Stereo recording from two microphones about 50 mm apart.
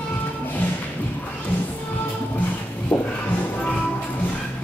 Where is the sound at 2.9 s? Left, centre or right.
Left.